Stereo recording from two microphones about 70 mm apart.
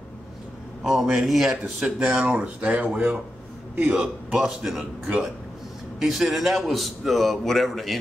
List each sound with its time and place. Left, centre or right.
0.8 s a man's voice: centre; by 4.0 s right
4.0 s a man's voice: centre